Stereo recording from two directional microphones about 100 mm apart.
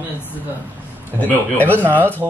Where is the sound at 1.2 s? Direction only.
15° left (ahead or behind).